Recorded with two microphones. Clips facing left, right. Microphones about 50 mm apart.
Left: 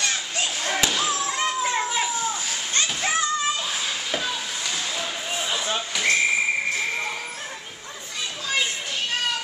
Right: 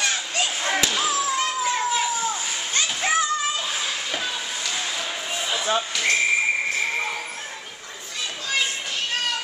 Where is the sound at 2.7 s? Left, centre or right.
Centre.